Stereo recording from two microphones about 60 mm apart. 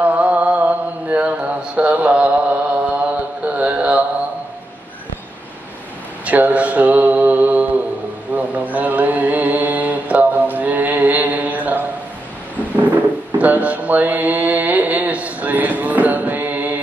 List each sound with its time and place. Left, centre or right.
0.0 s mantra: right
6.2 s mantra: right
12.8 s mantra: right